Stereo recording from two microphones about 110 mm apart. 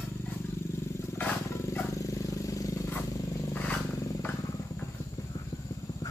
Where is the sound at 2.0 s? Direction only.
30° left (ahead or behind).